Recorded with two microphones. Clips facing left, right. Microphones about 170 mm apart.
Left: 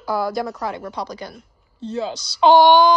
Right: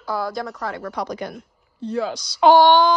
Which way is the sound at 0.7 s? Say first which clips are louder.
Right 1 dB; 25° left (ahead or behind).